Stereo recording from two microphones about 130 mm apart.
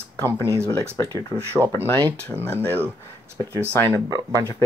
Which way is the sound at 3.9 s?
30° right (ahead or behind).